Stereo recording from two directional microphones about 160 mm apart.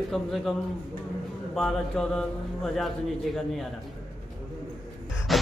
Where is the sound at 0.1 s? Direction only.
Centre (ahead or behind).